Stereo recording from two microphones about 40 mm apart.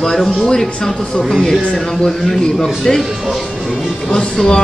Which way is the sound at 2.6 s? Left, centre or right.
Centre.